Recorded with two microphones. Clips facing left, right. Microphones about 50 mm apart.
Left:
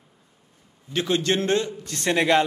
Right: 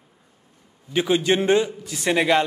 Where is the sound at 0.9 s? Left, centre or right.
Centre.